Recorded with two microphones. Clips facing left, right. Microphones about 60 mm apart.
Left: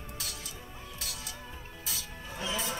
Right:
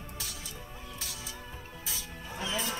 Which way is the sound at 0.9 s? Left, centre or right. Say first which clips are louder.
Left 1 dB; centre.